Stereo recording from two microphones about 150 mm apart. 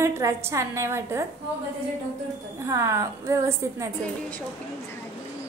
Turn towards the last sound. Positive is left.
turn(degrees=-20)  # may be behind; listen again after turning